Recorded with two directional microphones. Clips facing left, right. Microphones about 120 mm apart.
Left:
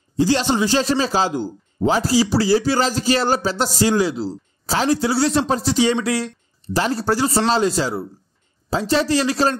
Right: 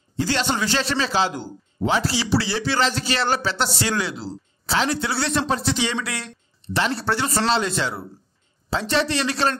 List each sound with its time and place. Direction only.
0.2 s speech: 35° left (ahead or behind)